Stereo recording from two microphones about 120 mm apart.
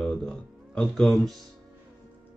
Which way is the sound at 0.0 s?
5° left (ahead or behind).